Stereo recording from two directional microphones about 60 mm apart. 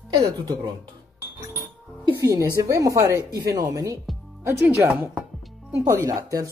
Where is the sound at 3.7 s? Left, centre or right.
Right.